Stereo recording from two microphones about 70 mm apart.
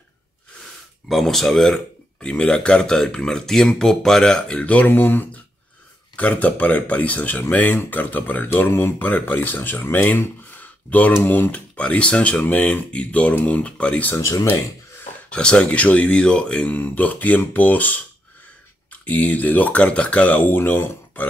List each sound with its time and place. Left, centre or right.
1.0 s speech: centre
14.2 s speech: left
15.2 s speech: centre
16.7 s speech: left